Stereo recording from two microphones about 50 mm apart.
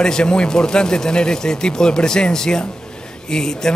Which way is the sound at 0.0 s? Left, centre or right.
Centre.